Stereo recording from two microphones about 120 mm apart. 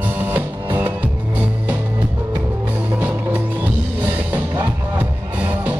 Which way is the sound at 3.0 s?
15° right (ahead or behind).